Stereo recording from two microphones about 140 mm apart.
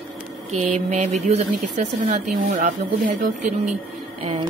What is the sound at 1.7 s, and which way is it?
Speech, 65° right (ahead or behind).